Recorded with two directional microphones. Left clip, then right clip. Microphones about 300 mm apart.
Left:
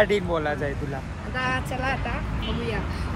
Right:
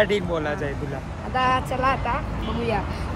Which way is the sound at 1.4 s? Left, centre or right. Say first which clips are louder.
Right 6 dB; centre.